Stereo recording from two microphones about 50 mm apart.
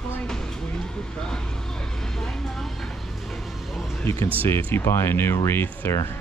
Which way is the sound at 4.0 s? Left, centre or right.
Left.